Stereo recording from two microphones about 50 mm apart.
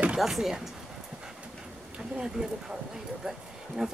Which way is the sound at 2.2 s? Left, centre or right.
Centre.